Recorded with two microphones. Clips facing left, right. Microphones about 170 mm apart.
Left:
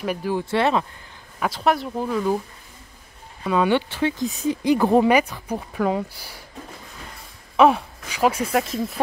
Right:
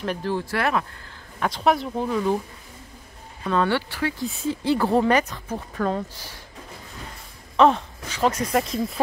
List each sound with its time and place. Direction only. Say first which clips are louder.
0.0 s speech: left 1 dB; 10° left (ahead or behind)
0.5 s speech: left 5 dB; 25° left (ahead or behind)
1.4 s speech: even; centre (ahead or behind)
3.4 s speech: left 3 dB; 15° left (ahead or behind)
7.5 s speech: left 1 dB; 10° left (ahead or behind)